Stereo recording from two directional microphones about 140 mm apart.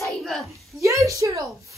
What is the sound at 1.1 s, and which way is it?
Speech, 25° right (ahead or behind).